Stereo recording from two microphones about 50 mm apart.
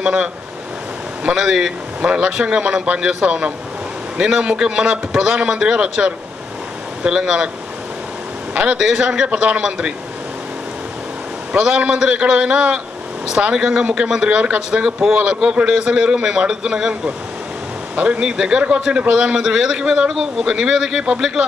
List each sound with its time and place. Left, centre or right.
0.0 s a man's voice: right
8.7 s a man's voice: centre
11.5 s a man's voice: centre
14.4 s a man's voice: right